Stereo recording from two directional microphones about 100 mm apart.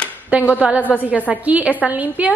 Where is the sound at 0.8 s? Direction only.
20° left (ahead or behind).